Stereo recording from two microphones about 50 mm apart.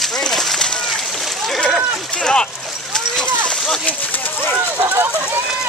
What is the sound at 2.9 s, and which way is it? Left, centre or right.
Vehicle, centre.